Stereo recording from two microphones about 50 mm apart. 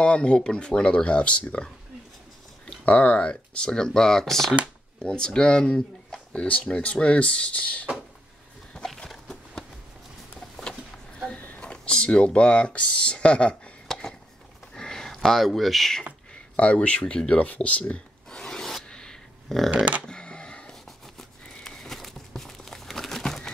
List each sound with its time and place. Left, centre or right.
0.0 s speech: centre
2.8 s speech: left; by 4.6 s centre
5.0 s speech: centre
8.7 s a sound: centre
11.3 s a sound: left
11.6 s speech: centre
13.8 s a sound: centre
14.8 s speech: centre
16.5 s speech: left
17.5 s filing: left
19.7 s speech: right
20.0 s a sound: centre